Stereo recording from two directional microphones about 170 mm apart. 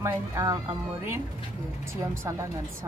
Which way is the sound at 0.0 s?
15° right (ahead or behind).